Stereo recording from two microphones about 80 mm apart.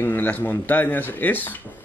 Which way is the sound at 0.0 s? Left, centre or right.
Left.